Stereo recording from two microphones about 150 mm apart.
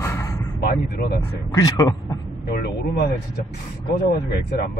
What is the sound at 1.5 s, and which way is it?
Speech, 25° left (ahead or behind).